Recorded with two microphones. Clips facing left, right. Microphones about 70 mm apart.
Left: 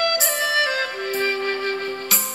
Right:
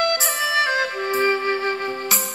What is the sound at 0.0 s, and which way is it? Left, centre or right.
Music, right.